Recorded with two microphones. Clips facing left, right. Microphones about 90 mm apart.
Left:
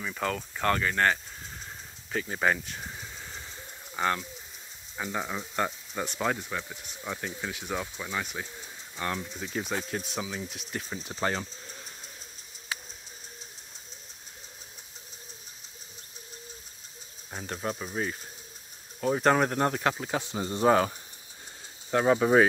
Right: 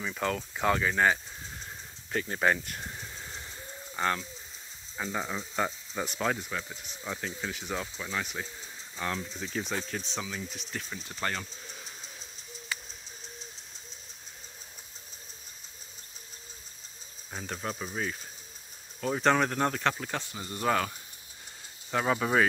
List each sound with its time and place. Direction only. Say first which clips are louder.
0.0 s speech: even; centre (ahead or behind)
11.1 s speech: left 4 dB; 20° left (ahead or behind)
11.3 s a sound: left 3 dB; centre (ahead or behind)
17.3 s speech: left 2 dB; 5° left (ahead or behind)
20.3 s speech: left 6 dB; 25° left (ahead or behind)
22.0 s speech: left 5 dB; 15° left (ahead or behind)